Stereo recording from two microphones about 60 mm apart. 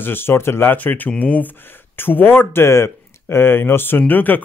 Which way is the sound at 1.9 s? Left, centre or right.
Left.